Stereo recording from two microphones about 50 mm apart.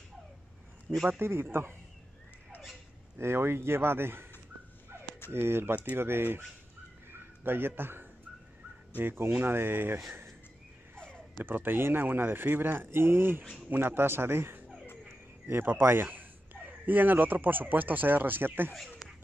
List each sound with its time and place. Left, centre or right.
0.9 s a man's voice: centre
1.2 s speech: right
3.2 s speech: right
5.3 s speech: right
7.1 s a sound: right
8.9 s speech: right
11.4 s speech: right
15.8 s speech: right
16.5 s speech: right